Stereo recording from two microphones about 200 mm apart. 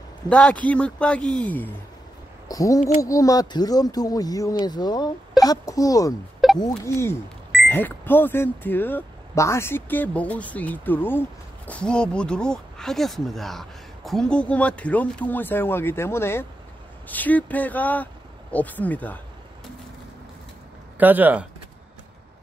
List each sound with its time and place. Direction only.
0.3 s speech: 5° left (ahead or behind)
6.4 s a sound: centre (ahead or behind)
6.8 s speech: 10° left (ahead or behind)
21.0 s speech: 10° right (ahead or behind)